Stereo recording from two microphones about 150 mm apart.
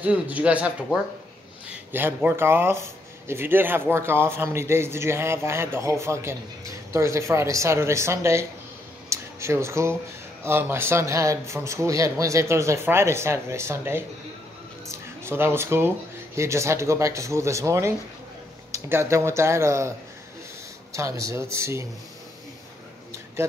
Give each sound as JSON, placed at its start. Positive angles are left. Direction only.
{"t": 0.0, "sound": "speech", "side_deg": -10}
{"t": 1.9, "sound": "speech", "side_deg": -15}
{"t": 20.9, "sound": "speech", "side_deg": -20}